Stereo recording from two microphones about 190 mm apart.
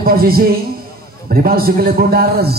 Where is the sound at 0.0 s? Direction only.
50° right (ahead or behind).